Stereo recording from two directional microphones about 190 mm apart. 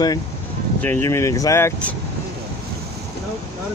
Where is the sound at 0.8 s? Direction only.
10° left (ahead or behind).